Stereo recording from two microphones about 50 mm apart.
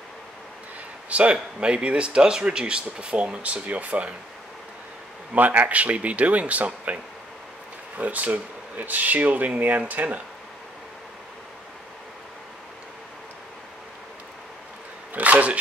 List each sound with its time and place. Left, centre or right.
1.0 s speech: right
5.3 s speech: right
8.0 s speech: right
15.1 s speech: right